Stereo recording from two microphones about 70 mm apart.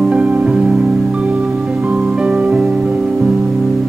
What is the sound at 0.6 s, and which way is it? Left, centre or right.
Music, centre.